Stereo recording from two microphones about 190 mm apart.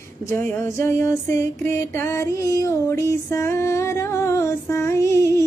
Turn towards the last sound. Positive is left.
turn(degrees=15)  # may be behind; listen again after turning